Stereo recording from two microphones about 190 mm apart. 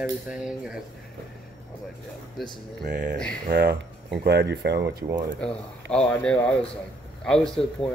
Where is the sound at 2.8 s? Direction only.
60° right (ahead or behind).